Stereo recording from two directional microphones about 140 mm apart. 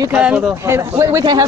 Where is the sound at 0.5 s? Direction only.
20° right (ahead or behind).